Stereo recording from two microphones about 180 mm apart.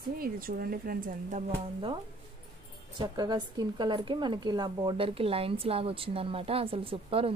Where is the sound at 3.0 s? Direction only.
25° right (ahead or behind).